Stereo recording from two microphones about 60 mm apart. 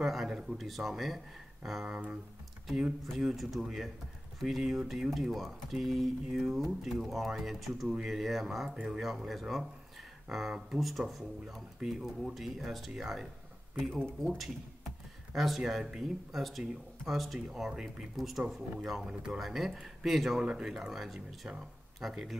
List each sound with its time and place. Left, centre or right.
0.0 s speech: centre
15.3 s speech: centre